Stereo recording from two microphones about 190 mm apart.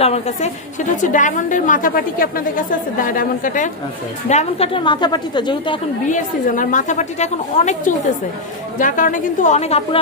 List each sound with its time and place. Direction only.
0.0 s a woman's voice: 35° left (ahead or behind)
6.0 s a woman's voice: 40° left (ahead or behind)